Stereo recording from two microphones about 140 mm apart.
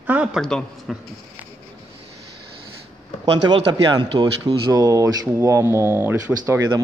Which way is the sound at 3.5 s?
30° right (ahead or behind).